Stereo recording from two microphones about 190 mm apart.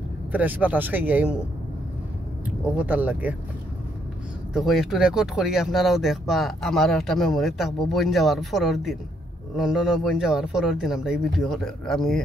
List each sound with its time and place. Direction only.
0.3 s speech: 10° right (ahead or behind)
2.6 s speech: 10° right (ahead or behind)
4.6 s speech: centre (ahead or behind)